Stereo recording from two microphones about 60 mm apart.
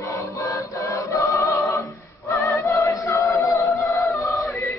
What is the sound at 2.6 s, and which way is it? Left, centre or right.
Music, left.